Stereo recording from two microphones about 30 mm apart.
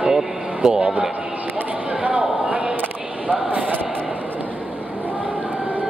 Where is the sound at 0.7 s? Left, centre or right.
Right.